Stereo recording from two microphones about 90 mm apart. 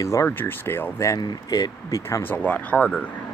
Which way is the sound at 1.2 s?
50° left (ahead or behind).